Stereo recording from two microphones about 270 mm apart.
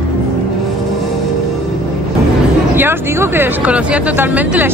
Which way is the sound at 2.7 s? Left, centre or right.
Centre.